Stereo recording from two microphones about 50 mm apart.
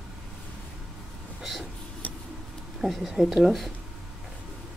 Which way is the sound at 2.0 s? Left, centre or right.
Left.